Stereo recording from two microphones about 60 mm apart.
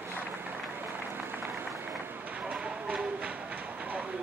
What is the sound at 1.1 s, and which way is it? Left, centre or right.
Applause, right.